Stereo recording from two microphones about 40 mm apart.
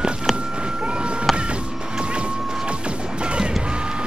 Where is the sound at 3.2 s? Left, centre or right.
Right.